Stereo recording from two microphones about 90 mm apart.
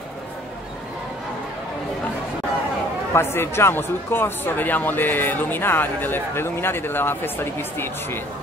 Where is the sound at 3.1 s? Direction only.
25° left (ahead or behind).